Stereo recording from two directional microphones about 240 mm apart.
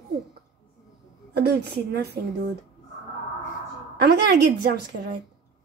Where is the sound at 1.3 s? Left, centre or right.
Right.